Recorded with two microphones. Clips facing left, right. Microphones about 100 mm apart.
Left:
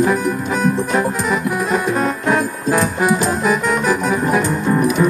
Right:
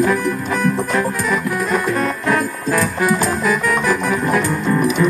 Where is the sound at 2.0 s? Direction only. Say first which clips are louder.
Left 1 dB; 25° left (ahead or behind).